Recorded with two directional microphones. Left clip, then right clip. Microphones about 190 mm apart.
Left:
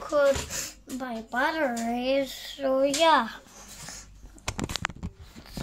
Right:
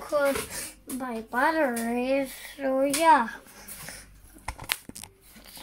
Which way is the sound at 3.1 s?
10° left (ahead or behind).